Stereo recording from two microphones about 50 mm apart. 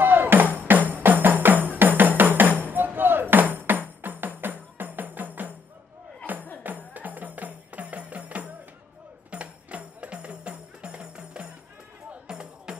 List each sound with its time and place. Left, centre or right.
0.0 s music: right
6.9 s music: right; by 12.7 s centre